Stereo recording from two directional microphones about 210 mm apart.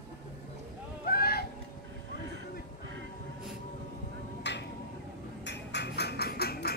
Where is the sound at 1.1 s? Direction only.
45° left (ahead or behind).